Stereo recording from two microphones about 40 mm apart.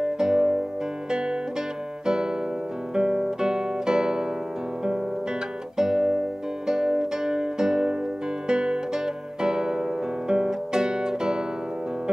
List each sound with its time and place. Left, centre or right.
0.0 s music: centre
2.9 s guitar: centre
5.8 s music: centre